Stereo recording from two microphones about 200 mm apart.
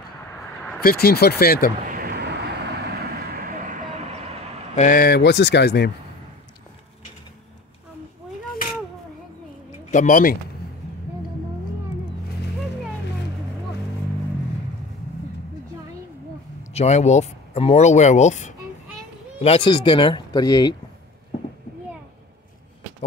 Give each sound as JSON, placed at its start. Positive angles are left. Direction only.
{"t": 0.7, "sound": "speech", "side_deg": 50}
{"t": 1.9, "sound": "vehicle", "side_deg": -50}
{"t": 4.7, "sound": "speech", "side_deg": 45}
{"t": 9.8, "sound": "speech", "side_deg": 40}
{"t": 16.7, "sound": "speech", "side_deg": 35}